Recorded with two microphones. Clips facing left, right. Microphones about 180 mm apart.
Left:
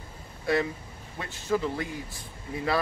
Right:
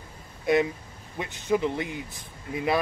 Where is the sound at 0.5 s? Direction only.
20° right (ahead or behind).